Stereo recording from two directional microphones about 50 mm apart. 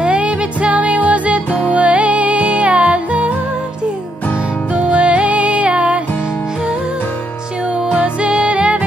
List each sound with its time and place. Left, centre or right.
0.0 s music: right
4.7 s music: right
7.7 s music: right